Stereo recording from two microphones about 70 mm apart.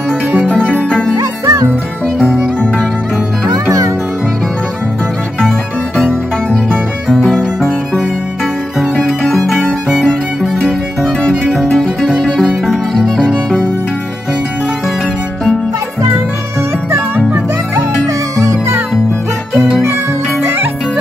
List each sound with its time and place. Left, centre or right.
0.6 s music: right
0.8 s music: centre
1.4 s music: right
2.1 s music: centre
7.1 s music: centre
17.7 s music: right